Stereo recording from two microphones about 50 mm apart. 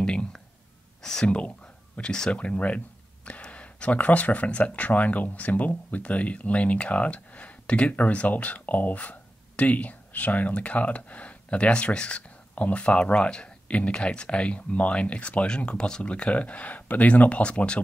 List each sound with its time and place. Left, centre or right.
0.0 s a sound: centre
1.2 s speech: left
2.3 s speech: left